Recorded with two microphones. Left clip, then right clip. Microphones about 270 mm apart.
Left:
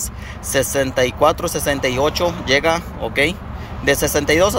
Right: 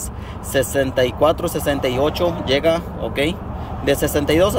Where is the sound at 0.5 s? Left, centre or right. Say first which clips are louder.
Left 1 dB; centre.